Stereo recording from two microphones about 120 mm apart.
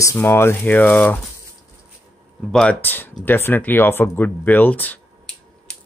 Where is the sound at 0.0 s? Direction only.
20° left (ahead or behind).